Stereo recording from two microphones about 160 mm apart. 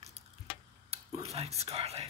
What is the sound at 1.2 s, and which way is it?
Speech, 40° right (ahead or behind).